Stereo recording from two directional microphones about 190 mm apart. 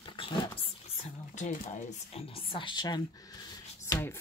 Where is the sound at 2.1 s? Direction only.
25° left (ahead or behind).